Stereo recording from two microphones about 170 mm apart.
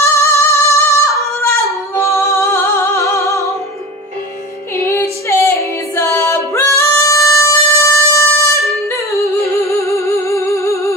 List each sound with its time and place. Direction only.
0.0 s singing: 15° left (ahead or behind)
1.4 s a sound: 15° left (ahead or behind)
2.3 s music: 15° left (ahead or behind)
4.8 s female singing: 15° left (ahead or behind)
9.1 s music: 15° left (ahead or behind)